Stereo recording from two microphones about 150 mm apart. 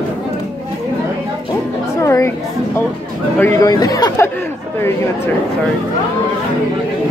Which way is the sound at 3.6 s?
25° left (ahead or behind).